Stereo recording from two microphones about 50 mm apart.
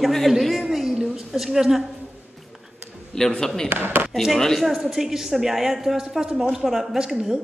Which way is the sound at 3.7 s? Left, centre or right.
Right.